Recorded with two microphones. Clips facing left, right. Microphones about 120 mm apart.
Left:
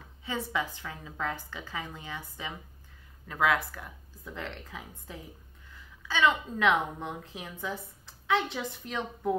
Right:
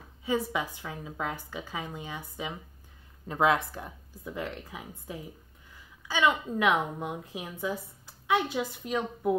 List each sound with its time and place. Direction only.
0.2 s a woman's voice: 15° right (ahead or behind)
4.3 s a woman's voice: 15° right (ahead or behind)